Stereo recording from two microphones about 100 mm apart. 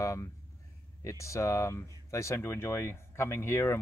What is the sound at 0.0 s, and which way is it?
Speech, 30° left (ahead or behind).